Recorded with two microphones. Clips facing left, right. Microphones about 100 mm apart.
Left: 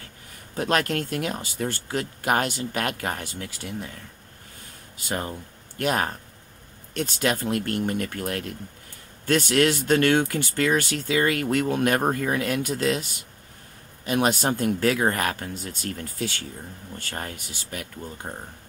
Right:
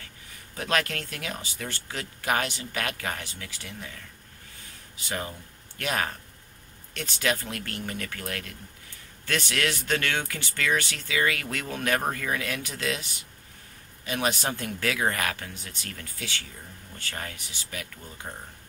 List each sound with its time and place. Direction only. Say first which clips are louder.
0.6 s speech: left 4 dB; 45° left (ahead or behind)
4.9 s speech: left 4 dB; 45° left (ahead or behind)
12.0 s speech: left 6 dB; 30° left (ahead or behind)
12.3 s speech: left 6 dB; 50° left (ahead or behind)
17.1 s speech: left 3 dB; 40° left (ahead or behind)
17.4 s speech: left 3 dB; 50° left (ahead or behind)